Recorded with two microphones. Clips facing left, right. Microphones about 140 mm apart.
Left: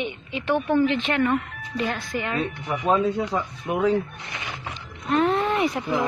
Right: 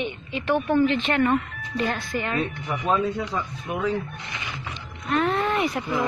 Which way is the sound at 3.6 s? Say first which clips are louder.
Left 5 dB; 25° left (ahead or behind).